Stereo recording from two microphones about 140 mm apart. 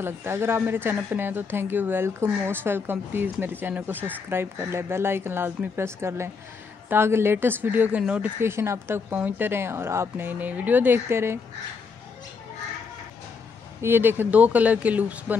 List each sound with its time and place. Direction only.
0.0 s speech: 15° right (ahead or behind)
13.7 s speech: 15° right (ahead or behind)